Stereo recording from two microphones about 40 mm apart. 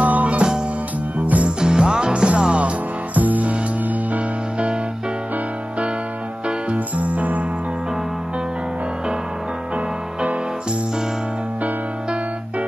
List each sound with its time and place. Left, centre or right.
0.0 s music: right
1.6 s music: right
3.2 s music: right
6.4 s music: right
9.8 s music: right